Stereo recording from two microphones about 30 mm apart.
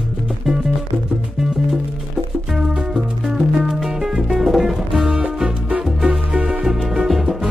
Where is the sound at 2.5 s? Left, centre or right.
Right; by 5.0 s centre.